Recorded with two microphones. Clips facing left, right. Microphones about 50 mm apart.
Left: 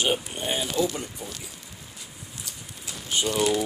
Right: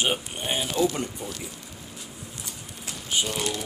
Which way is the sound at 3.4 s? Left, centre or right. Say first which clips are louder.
Left 7 dB; centre.